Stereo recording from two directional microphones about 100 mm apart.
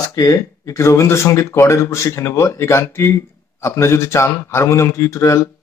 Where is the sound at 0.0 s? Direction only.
35° left (ahead or behind).